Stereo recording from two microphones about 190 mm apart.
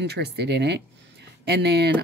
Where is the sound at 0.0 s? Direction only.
60° right (ahead or behind).